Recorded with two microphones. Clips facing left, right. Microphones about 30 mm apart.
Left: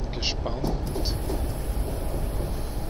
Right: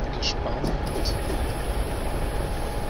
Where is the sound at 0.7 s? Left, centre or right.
Right.